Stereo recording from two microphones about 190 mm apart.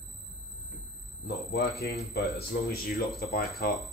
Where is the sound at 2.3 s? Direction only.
55° left (ahead or behind).